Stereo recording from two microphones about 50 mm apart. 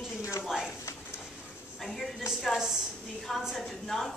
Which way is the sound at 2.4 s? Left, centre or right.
Centre.